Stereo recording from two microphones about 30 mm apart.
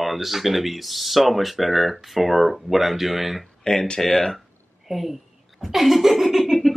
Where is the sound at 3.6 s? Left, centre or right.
Left.